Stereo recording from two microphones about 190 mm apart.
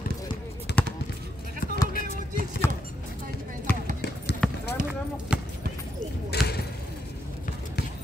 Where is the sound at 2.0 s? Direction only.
50° left (ahead or behind).